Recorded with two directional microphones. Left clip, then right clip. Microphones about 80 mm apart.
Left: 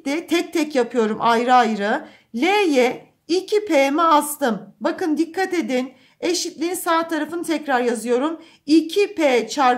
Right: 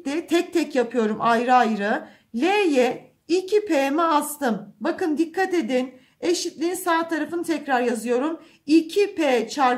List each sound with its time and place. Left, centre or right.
0.0 s speech: left